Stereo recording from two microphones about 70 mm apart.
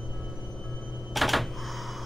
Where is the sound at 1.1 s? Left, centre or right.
Centre.